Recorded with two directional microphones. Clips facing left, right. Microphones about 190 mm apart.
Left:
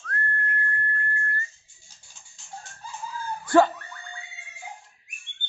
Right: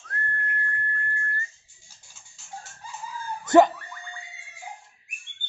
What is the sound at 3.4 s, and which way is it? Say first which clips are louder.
Boing: right 2 dB; 15° right (ahead or behind).